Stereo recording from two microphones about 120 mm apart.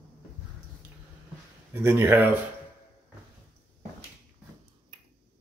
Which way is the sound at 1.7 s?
20° right (ahead or behind).